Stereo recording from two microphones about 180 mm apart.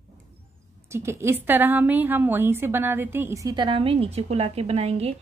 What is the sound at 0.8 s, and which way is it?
A woman's voice, 15° right (ahead or behind).